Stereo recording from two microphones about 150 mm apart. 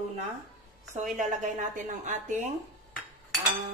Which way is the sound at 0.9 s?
55° right (ahead or behind).